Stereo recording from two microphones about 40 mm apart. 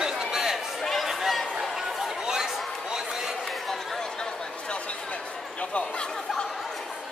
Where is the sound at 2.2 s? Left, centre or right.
Centre.